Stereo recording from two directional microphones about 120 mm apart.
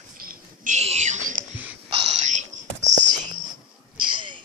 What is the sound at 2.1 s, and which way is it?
Whispering, 80° right.